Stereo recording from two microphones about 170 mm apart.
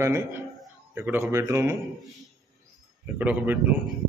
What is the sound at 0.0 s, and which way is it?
A man's voice, 15° right (ahead or behind).